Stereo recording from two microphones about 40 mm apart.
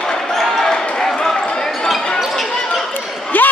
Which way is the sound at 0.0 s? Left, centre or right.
Centre.